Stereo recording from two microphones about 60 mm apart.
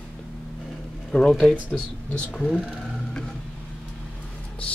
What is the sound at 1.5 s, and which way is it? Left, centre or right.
Speech, left.